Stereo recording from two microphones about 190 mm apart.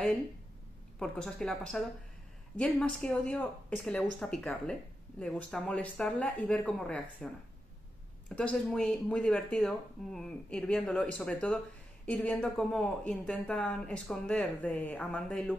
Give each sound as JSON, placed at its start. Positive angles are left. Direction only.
{"t": 0.9, "sound": "speech", "side_deg": 5}
{"t": 8.4, "sound": "speech", "side_deg": 5}